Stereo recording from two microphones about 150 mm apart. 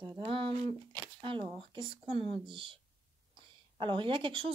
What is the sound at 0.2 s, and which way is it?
Speech, 40° right (ahead or behind).